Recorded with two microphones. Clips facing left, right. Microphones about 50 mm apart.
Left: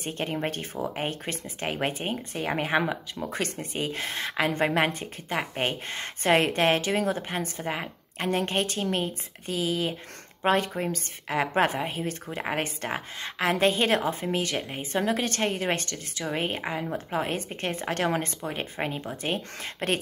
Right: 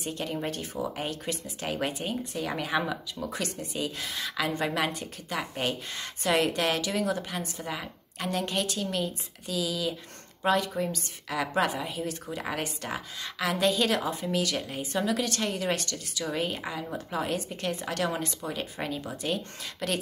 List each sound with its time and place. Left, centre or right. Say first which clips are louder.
0.0 s speech: left 2 dB; left